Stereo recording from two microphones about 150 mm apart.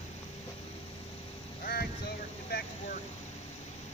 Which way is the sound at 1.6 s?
80° left.